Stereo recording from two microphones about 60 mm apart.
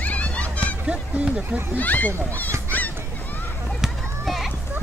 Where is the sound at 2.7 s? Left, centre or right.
Left.